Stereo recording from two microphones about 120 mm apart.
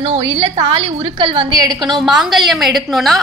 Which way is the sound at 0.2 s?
45° right (ahead or behind).